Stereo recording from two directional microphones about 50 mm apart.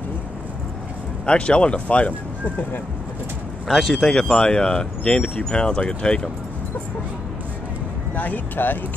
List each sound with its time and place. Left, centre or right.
1.2 s speech: left
3.6 s speech: centre
4.1 s speech: left
8.1 s speech: left